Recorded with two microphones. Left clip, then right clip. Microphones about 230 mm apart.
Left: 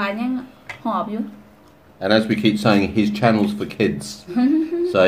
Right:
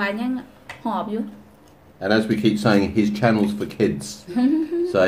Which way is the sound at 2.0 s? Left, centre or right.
Centre.